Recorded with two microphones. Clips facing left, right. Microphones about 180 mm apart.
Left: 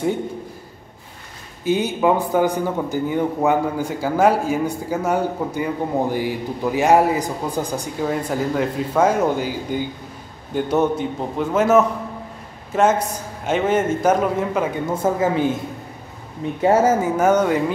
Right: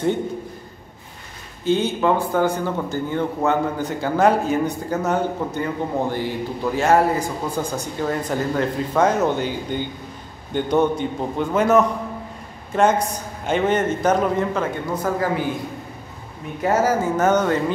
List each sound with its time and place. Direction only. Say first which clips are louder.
1.6 s a man's voice: left 1 dB; 10° left (ahead or behind)
15.0 s speech: left 4 dB; 25° left (ahead or behind)
16.6 s speech: left 3 dB; 25° left (ahead or behind)
17.0 s a man's voice: left 2 dB; 10° left (ahead or behind)